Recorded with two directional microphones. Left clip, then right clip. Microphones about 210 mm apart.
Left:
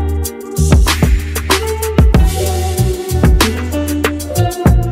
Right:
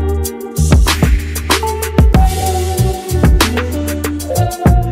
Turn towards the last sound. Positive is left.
turn(degrees=0)  # may be behind; listen again after turning